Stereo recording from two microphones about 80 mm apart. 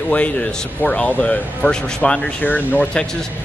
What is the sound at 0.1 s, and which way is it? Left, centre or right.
Speech, centre.